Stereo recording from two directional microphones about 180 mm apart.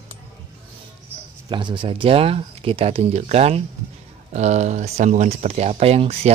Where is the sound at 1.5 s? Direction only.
25° right (ahead or behind).